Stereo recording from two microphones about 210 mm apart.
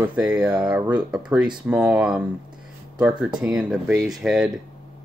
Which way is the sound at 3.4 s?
5° right (ahead or behind).